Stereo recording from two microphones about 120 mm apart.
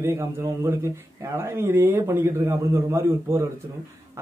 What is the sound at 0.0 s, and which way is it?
A man's voice, 25° right (ahead or behind).